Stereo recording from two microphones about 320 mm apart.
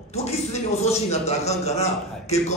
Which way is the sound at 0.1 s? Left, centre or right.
Centre.